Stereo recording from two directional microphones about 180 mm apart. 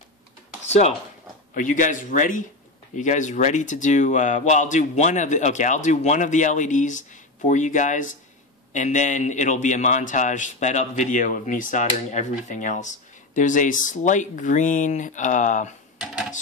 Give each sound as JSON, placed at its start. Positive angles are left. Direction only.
{"t": 0.7, "sound": "a man's voice", "side_deg": 35}